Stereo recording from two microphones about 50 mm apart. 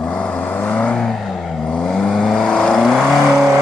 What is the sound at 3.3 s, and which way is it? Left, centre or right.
Vehicle, centre.